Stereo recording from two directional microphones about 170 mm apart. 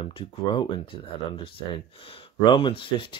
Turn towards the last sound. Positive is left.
turn(degrees=30)  # may be behind; listen again after turning